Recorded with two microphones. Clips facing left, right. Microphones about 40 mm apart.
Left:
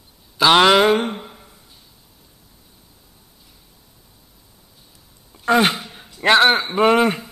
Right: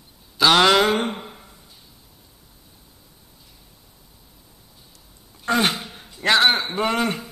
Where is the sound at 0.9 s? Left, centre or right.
Centre.